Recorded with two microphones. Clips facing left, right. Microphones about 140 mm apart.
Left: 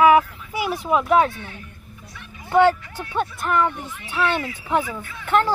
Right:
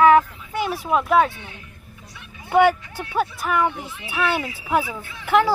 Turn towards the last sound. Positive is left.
turn(degrees=-10)  # may be behind; listen again after turning